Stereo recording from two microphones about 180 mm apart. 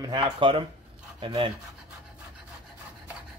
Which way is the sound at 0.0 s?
25° right (ahead or behind).